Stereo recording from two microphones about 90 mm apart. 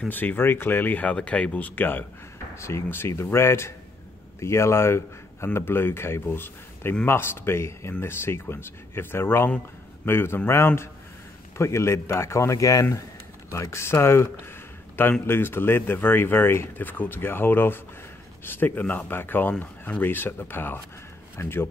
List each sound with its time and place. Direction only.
0.1 s speech: 20° left (ahead or behind)